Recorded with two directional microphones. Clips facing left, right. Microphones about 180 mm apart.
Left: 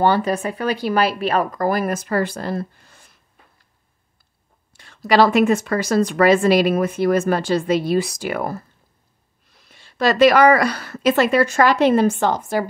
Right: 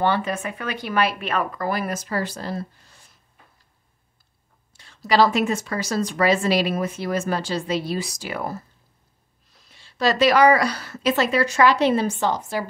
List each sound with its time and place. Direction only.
0.0 s speech: 40° left (ahead or behind); by 3.1 s 55° left (ahead or behind)
4.7 s speech: 55° left (ahead or behind)
9.7 s speech: 55° left (ahead or behind)